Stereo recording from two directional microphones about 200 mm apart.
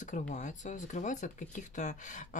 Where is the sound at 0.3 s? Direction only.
35° left (ahead or behind).